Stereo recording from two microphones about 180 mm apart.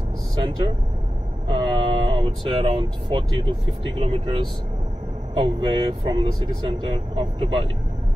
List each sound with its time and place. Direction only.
1.5 s speech: 30° right (ahead or behind)